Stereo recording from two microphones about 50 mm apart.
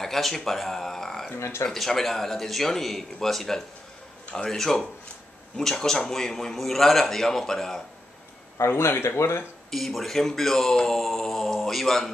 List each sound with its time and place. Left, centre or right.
0.0 s speech: centre
1.4 s speech: left
1.7 s a man's voice: centre
8.5 s speech: left
9.7 s speech: centre